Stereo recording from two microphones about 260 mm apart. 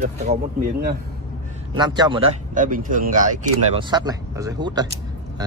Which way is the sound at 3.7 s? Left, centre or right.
Centre.